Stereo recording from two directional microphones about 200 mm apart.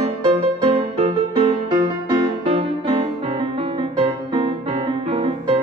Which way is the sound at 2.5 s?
30° right (ahead or behind).